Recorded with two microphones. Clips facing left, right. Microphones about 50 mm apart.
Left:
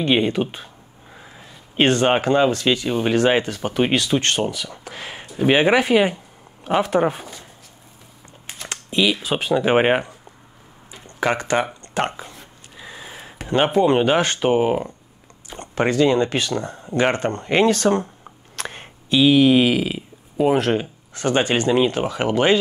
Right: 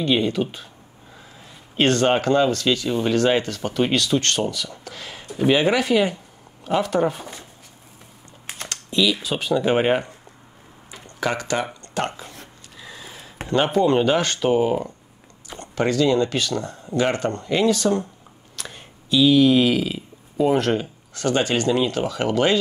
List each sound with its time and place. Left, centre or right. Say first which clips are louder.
0.0 s speech: left 2 dB; left
8.6 s speech: left 1 dB; left
10.9 s a sound: left 3 dB; left
13.5 s speech: left 2 dB; left